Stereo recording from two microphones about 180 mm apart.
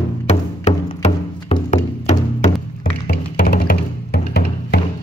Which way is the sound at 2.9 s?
60° left (ahead or behind).